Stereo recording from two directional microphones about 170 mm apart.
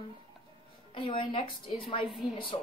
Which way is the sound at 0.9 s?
30° left (ahead or behind).